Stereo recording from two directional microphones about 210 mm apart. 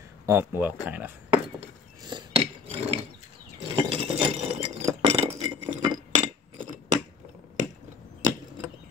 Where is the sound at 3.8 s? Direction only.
25° right (ahead or behind).